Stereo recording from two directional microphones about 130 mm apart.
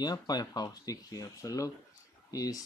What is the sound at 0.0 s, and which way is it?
Speech, 30° left (ahead or behind).